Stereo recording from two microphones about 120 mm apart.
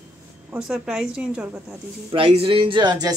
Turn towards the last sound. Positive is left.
turn(degrees=-35)  # may be behind; listen again after turning